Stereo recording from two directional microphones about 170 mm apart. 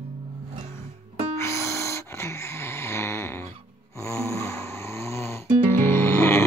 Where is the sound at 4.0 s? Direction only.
15° left (ahead or behind).